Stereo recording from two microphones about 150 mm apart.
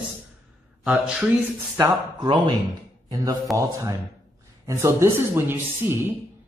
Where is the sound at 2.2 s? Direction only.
30° right (ahead or behind).